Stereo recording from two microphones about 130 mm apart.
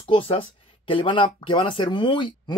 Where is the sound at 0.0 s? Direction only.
45° left (ahead or behind).